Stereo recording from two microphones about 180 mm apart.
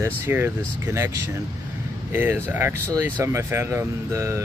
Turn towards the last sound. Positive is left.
turn(degrees=-15)  # may be behind; listen again after turning